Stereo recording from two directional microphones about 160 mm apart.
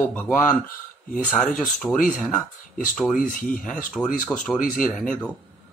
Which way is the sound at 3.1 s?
60° left (ahead or behind).